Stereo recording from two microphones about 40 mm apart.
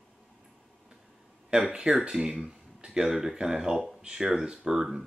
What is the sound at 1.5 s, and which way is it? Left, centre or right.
Speech, right.